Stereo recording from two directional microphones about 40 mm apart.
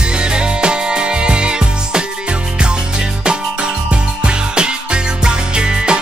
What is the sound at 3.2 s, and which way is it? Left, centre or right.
Music, right.